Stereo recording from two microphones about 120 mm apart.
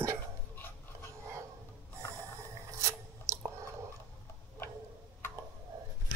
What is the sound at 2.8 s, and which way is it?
Filing, 25° right (ahead or behind).